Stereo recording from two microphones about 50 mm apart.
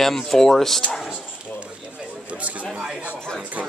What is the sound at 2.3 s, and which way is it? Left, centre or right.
A man's voice, right.